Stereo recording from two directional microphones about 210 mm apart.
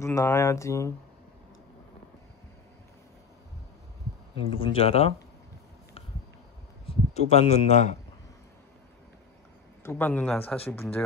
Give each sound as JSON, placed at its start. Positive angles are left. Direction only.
{"t": 0.0, "sound": "speech", "side_deg": 15}
{"t": 4.4, "sound": "speech", "side_deg": 25}
{"t": 6.9, "sound": "a man's voice", "side_deg": 30}
{"t": 9.8, "sound": "speech", "side_deg": 10}